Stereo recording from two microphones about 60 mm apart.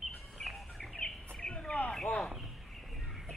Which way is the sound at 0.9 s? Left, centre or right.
Centre.